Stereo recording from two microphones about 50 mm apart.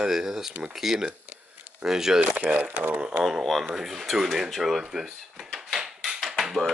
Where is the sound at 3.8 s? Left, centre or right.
Centre.